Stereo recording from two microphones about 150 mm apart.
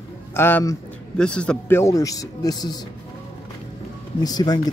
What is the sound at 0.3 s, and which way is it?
Speech, 15° left (ahead or behind).